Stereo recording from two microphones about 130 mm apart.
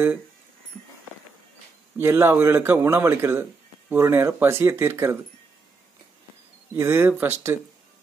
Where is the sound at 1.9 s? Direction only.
20° right (ahead or behind).